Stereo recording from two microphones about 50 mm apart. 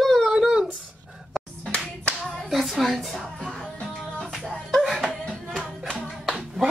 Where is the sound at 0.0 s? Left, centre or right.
Centre.